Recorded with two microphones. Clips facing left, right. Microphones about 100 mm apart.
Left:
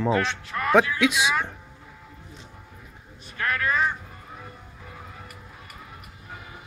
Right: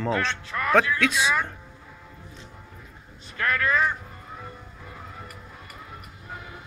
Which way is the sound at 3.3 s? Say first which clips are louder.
Right 1 dB; 20° left (ahead or behind).